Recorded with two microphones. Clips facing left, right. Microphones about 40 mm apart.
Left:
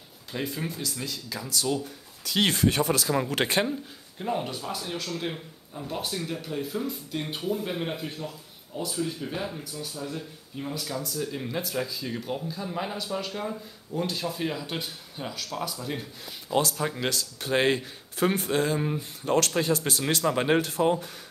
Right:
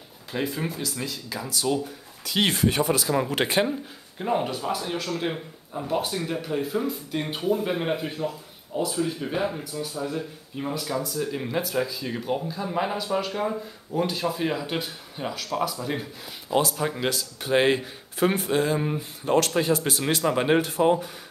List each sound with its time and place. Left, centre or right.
0.3 s speech: centre